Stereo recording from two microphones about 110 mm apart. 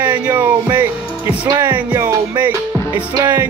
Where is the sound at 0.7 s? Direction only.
15° right (ahead or behind).